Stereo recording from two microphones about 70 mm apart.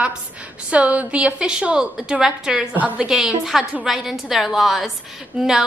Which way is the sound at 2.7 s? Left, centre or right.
Right.